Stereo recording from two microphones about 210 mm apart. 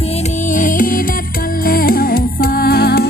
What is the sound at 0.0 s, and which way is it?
Music, 30° left (ahead or behind).